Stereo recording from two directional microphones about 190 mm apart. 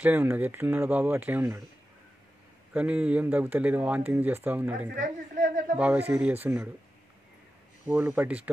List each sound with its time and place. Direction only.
0.0 s speech: 10° right (ahead or behind)
2.7 s speech: 5° right (ahead or behind)
4.9 s a woman's voice: 45° right (ahead or behind)
5.8 s speech: 10° right (ahead or behind)
7.9 s speech: 10° right (ahead or behind)